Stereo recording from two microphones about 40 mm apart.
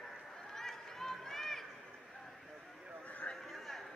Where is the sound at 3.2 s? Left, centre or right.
Left.